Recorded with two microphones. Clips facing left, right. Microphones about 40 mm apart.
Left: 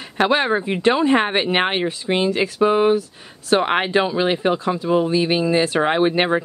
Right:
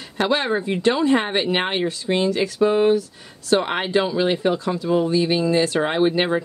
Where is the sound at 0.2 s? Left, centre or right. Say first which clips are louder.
Left 3 dB; left.